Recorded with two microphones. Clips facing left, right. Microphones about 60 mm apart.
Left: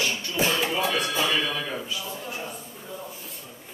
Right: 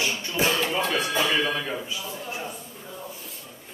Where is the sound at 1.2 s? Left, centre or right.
Right.